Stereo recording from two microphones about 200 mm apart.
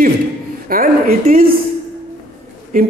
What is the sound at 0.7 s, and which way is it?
Speech, 45° right (ahead or behind).